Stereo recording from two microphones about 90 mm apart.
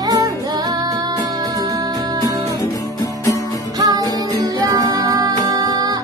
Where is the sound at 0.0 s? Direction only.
45° right (ahead or behind).